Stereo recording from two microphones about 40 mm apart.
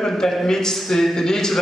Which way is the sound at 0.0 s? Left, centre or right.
Centre.